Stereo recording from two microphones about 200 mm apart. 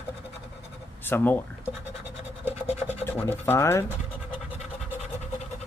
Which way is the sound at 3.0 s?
10° left (ahead or behind).